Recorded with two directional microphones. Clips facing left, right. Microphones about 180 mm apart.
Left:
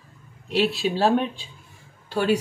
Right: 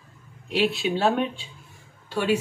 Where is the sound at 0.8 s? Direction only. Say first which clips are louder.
Left 4 dB; 35° left (ahead or behind).